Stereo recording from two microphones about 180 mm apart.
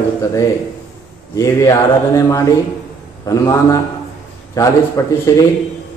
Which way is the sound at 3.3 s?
20° left (ahead or behind).